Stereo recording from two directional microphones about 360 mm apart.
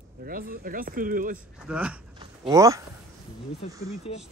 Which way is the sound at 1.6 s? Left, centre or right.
Centre.